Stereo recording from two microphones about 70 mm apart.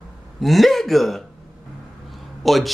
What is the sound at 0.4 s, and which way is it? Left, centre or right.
Speech, centre.